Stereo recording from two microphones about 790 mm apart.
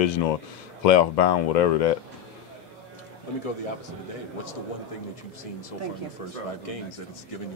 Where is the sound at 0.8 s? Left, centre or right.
Left.